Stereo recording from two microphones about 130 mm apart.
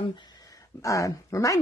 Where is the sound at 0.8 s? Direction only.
25° left (ahead or behind).